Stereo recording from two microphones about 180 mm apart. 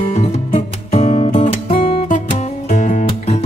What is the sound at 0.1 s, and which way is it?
Music, 35° left (ahead or behind).